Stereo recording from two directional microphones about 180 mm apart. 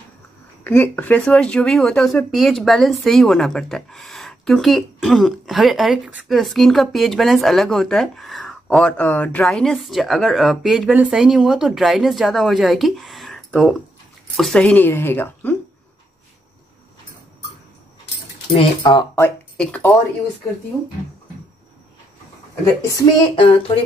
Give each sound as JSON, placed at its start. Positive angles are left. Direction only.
{"t": 0.7, "sound": "a woman's voice", "side_deg": 10}
{"t": 18.5, "sound": "speech", "side_deg": 30}
{"t": 19.1, "sound": "speech", "side_deg": 10}
{"t": 23.3, "sound": "speech", "side_deg": 30}